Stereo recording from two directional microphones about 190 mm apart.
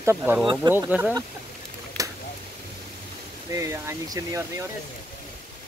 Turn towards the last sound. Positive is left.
turn(degrees=-15)  # may be behind; listen again after turning